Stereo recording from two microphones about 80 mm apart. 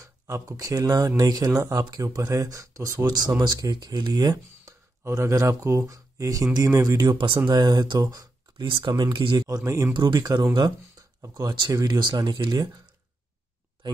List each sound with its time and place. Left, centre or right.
0.0 s speech: right
3.3 s speech: right
5.0 s speech: right
7.1 s speech: right
7.4 s speech: right
8.6 s speech: right
9.9 s speech: right
11.1 s speech: right
12.0 s speech: right